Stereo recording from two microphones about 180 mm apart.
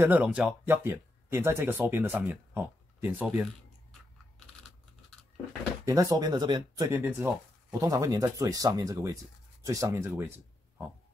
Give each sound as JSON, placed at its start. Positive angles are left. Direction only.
{"t": 0.0, "sound": "speech", "side_deg": -10}
{"t": 5.9, "sound": "speech", "side_deg": -20}
{"t": 6.9, "sound": "speech", "side_deg": -10}